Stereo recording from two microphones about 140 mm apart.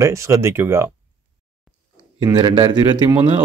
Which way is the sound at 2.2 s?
30° right (ahead or behind).